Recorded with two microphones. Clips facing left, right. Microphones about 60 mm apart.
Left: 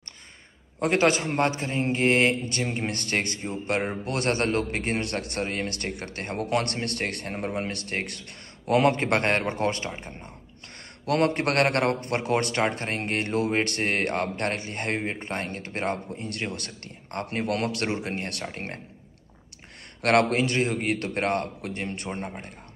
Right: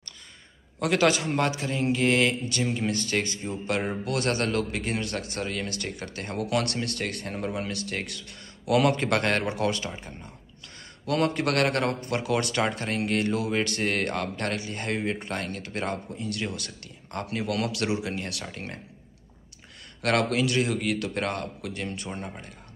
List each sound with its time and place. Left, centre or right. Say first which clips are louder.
0.7 s a man's voice: left 1 dB; left
2.7 s a man's voice: right 2 dB; left
8.7 s a man's voice: left 1 dB; left
15.0 s a man's voice: right 1 dB; left
20.0 s a man's voice: left 3 dB; left